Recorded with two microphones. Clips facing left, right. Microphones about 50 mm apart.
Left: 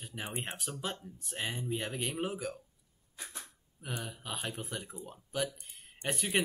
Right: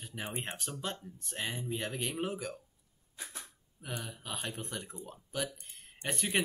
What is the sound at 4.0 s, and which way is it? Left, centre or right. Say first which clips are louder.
Speech: left 2 dB; centre.